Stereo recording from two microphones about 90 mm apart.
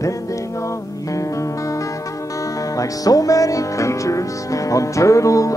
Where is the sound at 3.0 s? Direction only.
40° left (ahead or behind).